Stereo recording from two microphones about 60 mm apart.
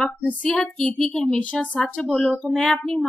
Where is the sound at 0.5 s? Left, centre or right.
Centre.